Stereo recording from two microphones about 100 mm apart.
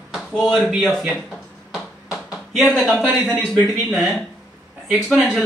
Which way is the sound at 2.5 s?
Centre (ahead or behind).